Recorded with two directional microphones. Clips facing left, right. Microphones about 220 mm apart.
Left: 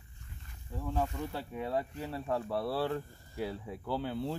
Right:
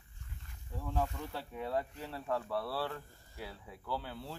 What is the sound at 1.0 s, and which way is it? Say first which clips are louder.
Speech: left 3 dB; 10° left (ahead or behind).